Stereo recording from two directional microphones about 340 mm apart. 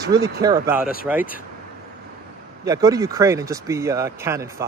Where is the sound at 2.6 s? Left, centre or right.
Centre.